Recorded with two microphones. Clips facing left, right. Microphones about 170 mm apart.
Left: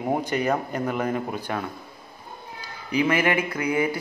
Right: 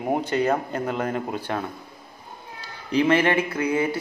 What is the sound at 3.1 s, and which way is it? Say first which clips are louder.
Speech: right 3 dB; 30° right (ahead or behind).